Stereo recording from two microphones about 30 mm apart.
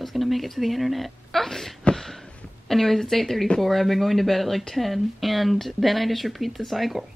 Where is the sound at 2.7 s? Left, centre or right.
Centre.